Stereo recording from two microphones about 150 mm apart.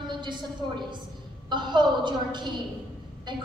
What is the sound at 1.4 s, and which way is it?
A woman's voice, 30° right (ahead or behind).